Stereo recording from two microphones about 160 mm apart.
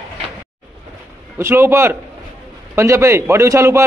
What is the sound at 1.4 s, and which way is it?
A man's voice, 15° right (ahead or behind).